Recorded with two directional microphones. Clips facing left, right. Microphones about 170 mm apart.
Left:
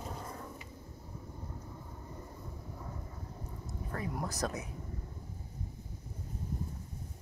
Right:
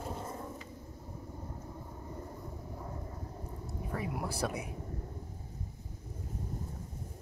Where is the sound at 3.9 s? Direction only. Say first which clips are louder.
Right 1 dB; 5° right (ahead or behind).